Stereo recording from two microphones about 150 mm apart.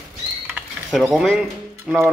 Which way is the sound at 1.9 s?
Centre (ahead or behind).